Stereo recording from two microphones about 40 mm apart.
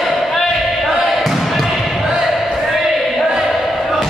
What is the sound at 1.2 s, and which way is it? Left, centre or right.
Basketball bounce, centre.